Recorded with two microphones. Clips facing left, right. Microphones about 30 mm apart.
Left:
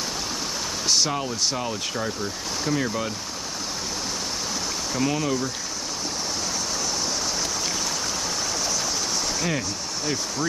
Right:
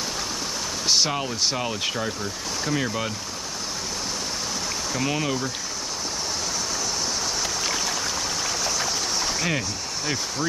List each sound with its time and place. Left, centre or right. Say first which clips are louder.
0.8 s speech: right 1 dB; centre
4.9 s speech: left 2 dB; centre
8.6 s a sound: right 1 dB; right